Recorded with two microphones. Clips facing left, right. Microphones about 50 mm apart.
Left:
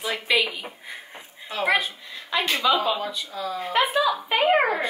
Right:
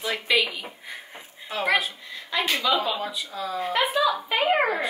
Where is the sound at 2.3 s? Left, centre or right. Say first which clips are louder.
Left 1 dB; centre.